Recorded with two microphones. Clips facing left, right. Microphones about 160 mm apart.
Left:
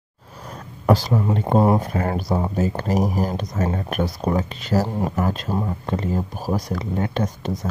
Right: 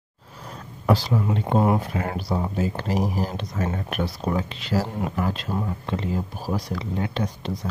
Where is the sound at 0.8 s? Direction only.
45° left (ahead or behind).